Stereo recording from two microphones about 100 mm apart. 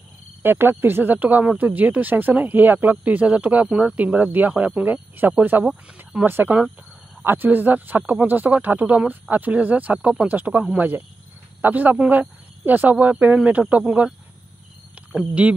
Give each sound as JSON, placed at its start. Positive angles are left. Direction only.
{"t": 0.4, "sound": "speech", "side_deg": -20}